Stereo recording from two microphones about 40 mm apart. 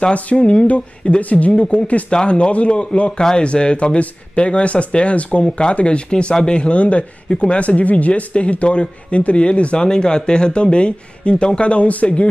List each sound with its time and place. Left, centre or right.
0.1 s speech: left
1.5 s speech: centre
5.4 s speech: left